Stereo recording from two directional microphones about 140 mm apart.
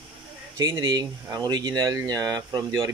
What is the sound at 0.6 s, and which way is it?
Speech, 30° right (ahead or behind).